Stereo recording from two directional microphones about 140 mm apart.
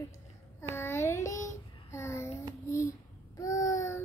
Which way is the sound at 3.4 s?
25° left (ahead or behind).